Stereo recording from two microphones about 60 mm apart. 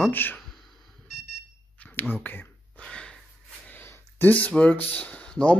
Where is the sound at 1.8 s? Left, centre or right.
Left.